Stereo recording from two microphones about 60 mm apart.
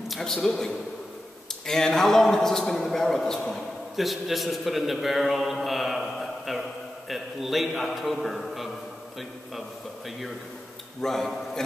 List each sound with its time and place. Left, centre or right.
0.1 s a man's voice: centre
11.0 s a man's voice: centre